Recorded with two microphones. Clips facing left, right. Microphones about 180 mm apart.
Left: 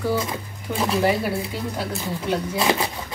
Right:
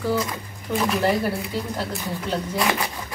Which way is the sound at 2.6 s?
25° left (ahead or behind).